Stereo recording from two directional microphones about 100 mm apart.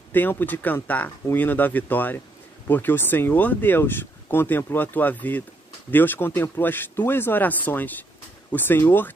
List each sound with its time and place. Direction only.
0.1 s speech: 20° left (ahead or behind)